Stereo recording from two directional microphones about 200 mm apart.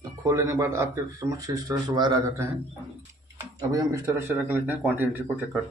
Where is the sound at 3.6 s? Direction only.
15° right (ahead or behind).